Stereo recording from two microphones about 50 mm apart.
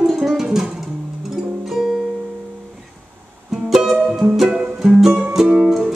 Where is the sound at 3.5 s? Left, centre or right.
Centre.